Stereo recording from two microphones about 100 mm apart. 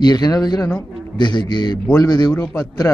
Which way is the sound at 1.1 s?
50° left (ahead or behind).